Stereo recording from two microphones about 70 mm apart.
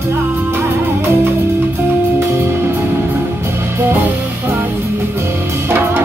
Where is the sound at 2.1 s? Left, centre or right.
Right.